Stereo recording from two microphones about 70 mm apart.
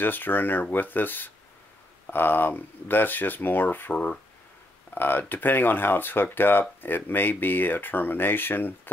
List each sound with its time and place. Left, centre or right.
0.0 s speech: left
4.9 s speech: left